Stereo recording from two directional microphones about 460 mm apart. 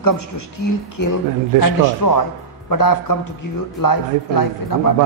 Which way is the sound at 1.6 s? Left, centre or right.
Left.